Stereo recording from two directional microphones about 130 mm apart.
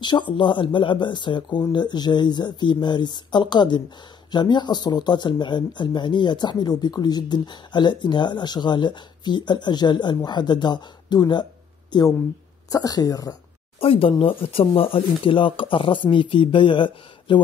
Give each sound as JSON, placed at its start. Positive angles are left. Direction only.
{"t": 0.0, "sound": "speech", "side_deg": 35}
{"t": 13.7, "sound": "speech", "side_deg": 45}